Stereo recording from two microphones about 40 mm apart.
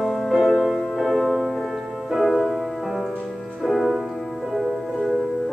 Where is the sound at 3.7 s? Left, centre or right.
Centre.